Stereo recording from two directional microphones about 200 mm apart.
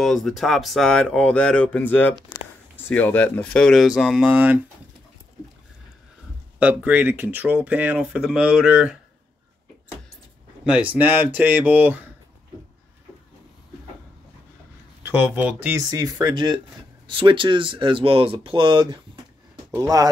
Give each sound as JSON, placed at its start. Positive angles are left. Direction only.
{"t": 0.0, "sound": "speech", "side_deg": 0}
{"t": 6.6, "sound": "speech", "side_deg": -5}
{"t": 10.6, "sound": "speech", "side_deg": -5}
{"t": 15.0, "sound": "speech", "side_deg": -10}